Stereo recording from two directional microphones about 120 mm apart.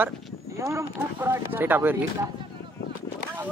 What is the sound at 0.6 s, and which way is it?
Speech, 25° right (ahead or behind).